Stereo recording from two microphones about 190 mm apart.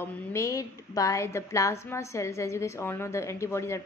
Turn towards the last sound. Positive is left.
turn(degrees=15)  # may be behind; listen again after turning